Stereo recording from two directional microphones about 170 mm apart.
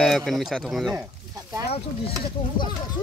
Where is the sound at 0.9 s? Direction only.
20° right (ahead or behind).